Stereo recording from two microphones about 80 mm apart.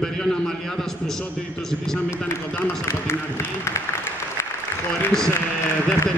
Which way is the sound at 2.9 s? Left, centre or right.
Left.